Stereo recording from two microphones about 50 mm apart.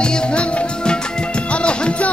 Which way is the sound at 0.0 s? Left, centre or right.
Centre.